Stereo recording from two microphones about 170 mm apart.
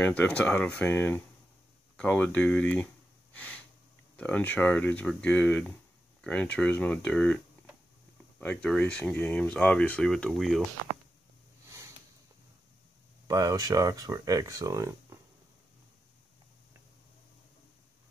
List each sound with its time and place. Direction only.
0.0 s speech: 10° left (ahead or behind)
3.3 s sniff: 10° left (ahead or behind)
4.2 s speech: 10° left (ahead or behind)
13.3 s speech: 20° right (ahead or behind)